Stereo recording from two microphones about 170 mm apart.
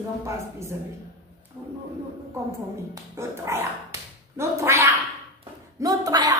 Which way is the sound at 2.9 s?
15° right (ahead or behind).